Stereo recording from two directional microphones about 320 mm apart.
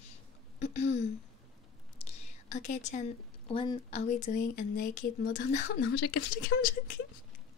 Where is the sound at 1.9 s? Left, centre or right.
Left.